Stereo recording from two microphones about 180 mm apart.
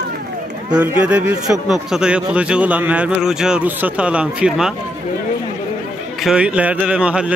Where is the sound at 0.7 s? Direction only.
5° right (ahead or behind).